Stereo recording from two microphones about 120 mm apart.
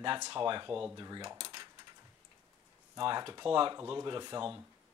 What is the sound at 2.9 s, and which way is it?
Speech, 40° right (ahead or behind).